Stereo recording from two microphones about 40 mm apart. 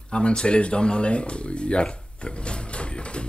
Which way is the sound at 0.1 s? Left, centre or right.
Left.